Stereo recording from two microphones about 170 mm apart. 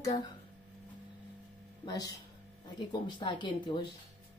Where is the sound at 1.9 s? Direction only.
20° left (ahead or behind).